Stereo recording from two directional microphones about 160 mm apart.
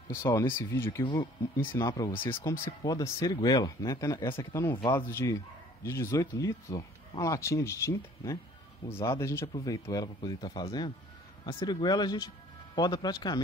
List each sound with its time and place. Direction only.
0.2 s speech: 20° left (ahead or behind)